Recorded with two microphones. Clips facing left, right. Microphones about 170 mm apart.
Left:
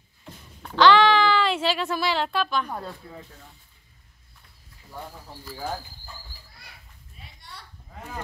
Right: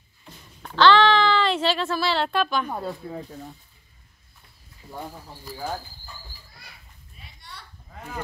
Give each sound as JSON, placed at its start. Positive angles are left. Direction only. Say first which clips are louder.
{"t": 0.6, "sound": "a sound", "louder": "even", "side_deg": 10}
{"t": 2.2, "sound": "a woman's voice", "louder": "right 2 dB", "side_deg": 0}
{"t": 2.7, "sound": "speech", "louder": "right 4 dB", "side_deg": -15}
{"t": 3.1, "sound": "speech", "louder": "right 8 dB", "side_deg": -35}